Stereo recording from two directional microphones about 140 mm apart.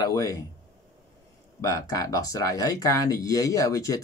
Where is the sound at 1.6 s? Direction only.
25° left (ahead or behind).